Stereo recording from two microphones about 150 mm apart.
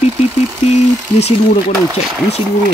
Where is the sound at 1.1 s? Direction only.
45° left (ahead or behind).